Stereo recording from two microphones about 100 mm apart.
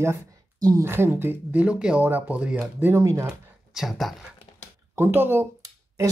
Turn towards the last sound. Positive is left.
turn(degrees=-30)  # may be behind; listen again after turning